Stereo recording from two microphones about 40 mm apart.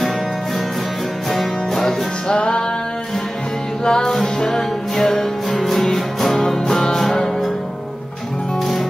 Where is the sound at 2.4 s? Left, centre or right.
Left.